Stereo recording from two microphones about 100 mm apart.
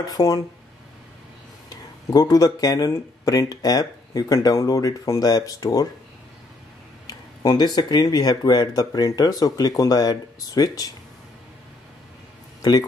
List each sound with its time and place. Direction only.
0.0 s speech: 40° left (ahead or behind)
1.7 s speech: 40° left (ahead or behind)
7.1 s speech: 40° left (ahead or behind)